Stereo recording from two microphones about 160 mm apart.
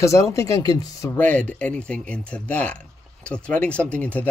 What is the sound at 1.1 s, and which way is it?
Speech, 10° left (ahead or behind).